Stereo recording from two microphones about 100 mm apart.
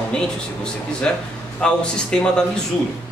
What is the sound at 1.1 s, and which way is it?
A man's voice, 10° left (ahead or behind).